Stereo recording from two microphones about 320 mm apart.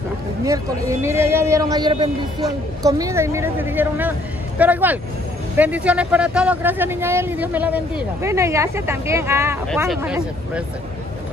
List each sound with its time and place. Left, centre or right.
0.5 s a man's voice: centre